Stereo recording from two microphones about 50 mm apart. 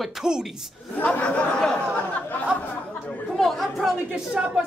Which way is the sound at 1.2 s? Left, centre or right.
Left.